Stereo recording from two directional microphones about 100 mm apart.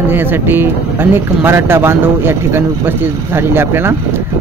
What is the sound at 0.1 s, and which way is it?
Speech, 20° right (ahead or behind).